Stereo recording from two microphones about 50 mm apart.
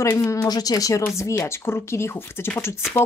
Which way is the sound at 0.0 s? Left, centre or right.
Left.